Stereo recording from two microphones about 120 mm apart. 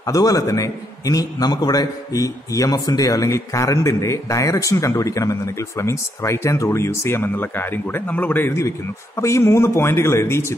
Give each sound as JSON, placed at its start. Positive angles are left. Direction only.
{"t": 0.0, "sound": "a man's voice", "side_deg": 30}